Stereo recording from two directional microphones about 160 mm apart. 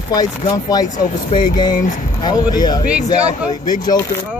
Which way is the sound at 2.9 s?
5° right (ahead or behind).